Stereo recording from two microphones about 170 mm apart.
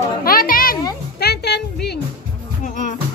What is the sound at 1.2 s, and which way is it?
Music, 75° left (ahead or behind).